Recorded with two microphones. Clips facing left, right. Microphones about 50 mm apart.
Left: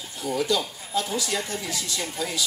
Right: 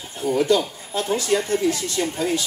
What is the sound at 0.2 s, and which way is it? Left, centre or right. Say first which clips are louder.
Speech: right 6 dB; right.